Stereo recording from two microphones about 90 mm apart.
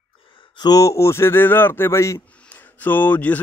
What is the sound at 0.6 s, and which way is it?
A man's voice, 40° left (ahead or behind).